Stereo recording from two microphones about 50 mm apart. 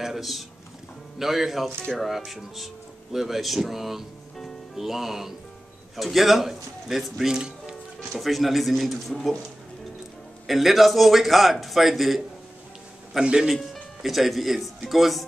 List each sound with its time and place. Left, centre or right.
0.0 s speech: centre
8.1 s speech: centre
10.4 s speech: centre
13.2 s a man's voice: centre
14.0 s speech: centre